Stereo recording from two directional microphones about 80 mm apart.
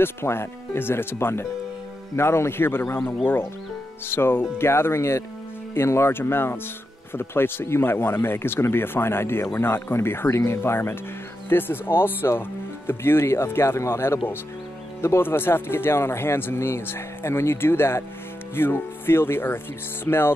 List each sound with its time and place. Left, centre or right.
0.0 s speech: left
4.1 s speech: left